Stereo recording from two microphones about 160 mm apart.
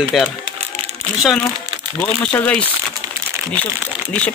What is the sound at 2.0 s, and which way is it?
Speech, 10° left (ahead or behind).